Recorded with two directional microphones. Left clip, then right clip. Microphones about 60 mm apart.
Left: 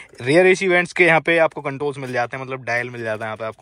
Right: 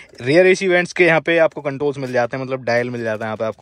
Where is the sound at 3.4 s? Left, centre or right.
Right.